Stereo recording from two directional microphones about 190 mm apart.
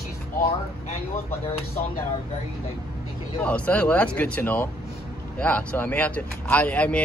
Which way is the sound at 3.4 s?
5° left (ahead or behind).